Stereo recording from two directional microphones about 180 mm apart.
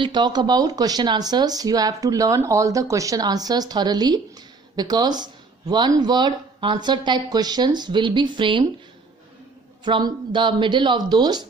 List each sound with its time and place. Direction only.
0.0 s speech: 25° right (ahead or behind)
9.8 s speech: 25° right (ahead or behind)